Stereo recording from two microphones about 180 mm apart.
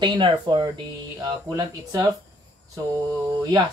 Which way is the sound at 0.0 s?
25° right (ahead or behind).